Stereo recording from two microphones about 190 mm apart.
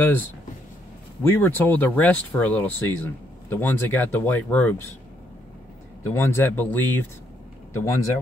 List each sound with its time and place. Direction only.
0.0 s speech: 10° left (ahead or behind)
6.0 s speech: 15° left (ahead or behind)